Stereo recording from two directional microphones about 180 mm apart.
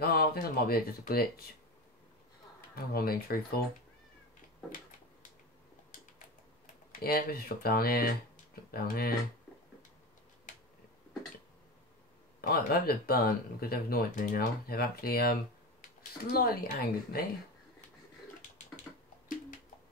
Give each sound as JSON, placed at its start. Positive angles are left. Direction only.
{"t": 0.0, "sound": "speech", "side_deg": 55}
{"t": 2.7, "sound": "speech", "side_deg": 55}
{"t": 7.0, "sound": "speech", "side_deg": 55}
{"t": 12.4, "sound": "speech", "side_deg": 55}
{"t": 18.9, "sound": "a sound", "side_deg": 10}